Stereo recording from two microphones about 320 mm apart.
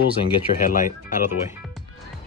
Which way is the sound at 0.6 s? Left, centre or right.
Left.